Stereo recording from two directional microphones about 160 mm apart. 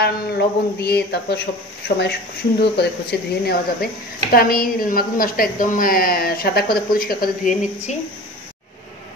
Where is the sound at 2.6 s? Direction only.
90° left; by 7.5 s 65° left (ahead or behind).